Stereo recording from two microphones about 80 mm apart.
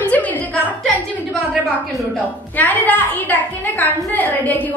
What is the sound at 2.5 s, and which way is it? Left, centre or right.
A woman's voice, left.